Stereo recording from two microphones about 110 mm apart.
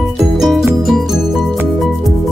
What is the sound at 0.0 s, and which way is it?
Music, centre (ahead or behind).